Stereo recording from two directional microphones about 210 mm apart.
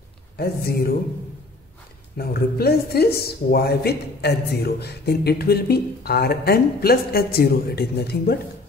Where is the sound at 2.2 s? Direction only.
45° left (ahead or behind).